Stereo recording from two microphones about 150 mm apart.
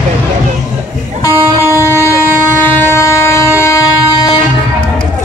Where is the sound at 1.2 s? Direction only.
20° left (ahead or behind).